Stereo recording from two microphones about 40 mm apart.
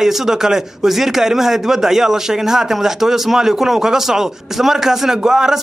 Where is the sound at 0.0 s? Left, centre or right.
Centre.